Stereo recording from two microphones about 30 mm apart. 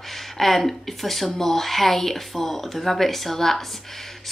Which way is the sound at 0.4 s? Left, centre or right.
Centre.